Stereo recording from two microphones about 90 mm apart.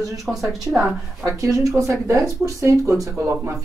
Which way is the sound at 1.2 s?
35° right (ahead or behind).